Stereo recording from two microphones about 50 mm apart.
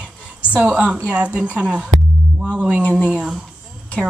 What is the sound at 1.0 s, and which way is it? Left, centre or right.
Speech, right.